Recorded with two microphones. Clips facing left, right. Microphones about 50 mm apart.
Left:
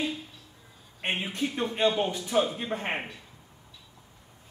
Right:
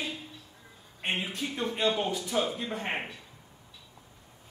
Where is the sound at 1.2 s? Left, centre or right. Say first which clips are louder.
Left 3 dB; centre.